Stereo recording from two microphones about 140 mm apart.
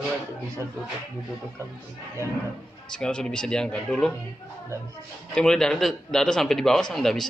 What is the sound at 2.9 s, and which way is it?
A man's voice, 5° left (ahead or behind).